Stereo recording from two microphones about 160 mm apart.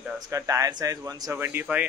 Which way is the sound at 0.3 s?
20° right (ahead or behind).